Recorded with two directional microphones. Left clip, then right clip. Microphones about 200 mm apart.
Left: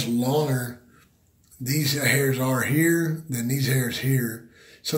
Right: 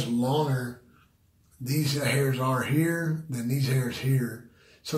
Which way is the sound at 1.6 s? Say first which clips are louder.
Left 4 dB; 25° left (ahead or behind).